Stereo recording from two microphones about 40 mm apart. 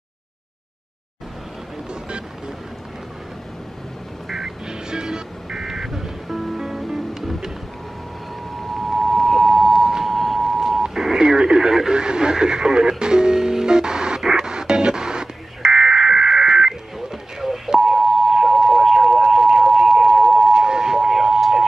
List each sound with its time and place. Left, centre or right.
2.0 s music: right
4.3 s music: centre
8.5 s a sound: centre
10.0 s radio: centre
11.9 s music: right
17.4 s beep: centre
17.7 s a sound: centre